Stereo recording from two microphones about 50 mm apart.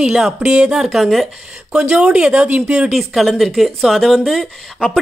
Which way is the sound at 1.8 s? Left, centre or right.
Centre.